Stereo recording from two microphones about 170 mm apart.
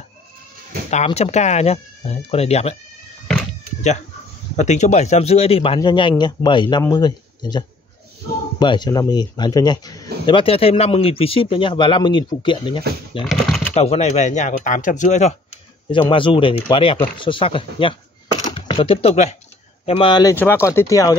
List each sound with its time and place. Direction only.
0.8 s speech: 40° left (ahead or behind)
4.6 s a man's voice: 45° left (ahead or behind)
13.2 s speech: centre (ahead or behind)
13.7 s speech: 40° left (ahead or behind)
15.9 s a man's voice: 30° left (ahead or behind)
20.3 s speech: 15° left (ahead or behind)